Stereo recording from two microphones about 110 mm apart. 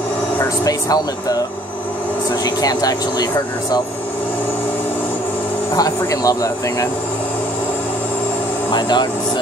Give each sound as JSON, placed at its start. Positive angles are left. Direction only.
{"t": 0.7, "sound": "speech", "side_deg": 35}
{"t": 2.4, "sound": "speech", "side_deg": 35}
{"t": 5.8, "sound": "speech", "side_deg": 30}
{"t": 8.7, "sound": "speech", "side_deg": 40}